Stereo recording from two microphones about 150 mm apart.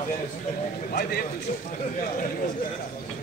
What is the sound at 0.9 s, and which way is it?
Speech, 90° left.